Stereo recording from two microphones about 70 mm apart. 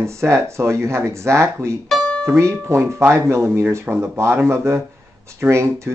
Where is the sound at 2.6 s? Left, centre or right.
Right.